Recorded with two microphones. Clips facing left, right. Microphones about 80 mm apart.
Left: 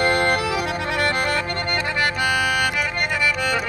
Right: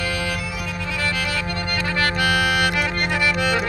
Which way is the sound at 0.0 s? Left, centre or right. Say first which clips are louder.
Left 7 dB; left.